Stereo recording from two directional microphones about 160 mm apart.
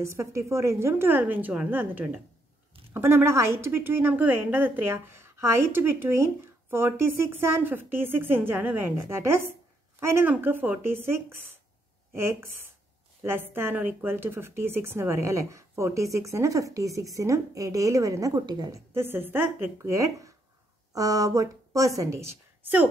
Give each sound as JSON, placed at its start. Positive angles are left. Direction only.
{"t": 0.0, "sound": "speech", "side_deg": -20}
{"t": 18.9, "sound": "a woman's voice", "side_deg": -15}